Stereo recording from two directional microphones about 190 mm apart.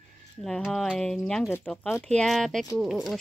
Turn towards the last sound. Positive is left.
turn(degrees=0)  # may be behind; listen again after turning